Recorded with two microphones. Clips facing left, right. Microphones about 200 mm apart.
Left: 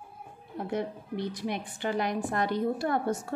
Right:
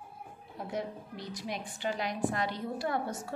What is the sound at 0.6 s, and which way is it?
A woman's voice, 60° left (ahead or behind).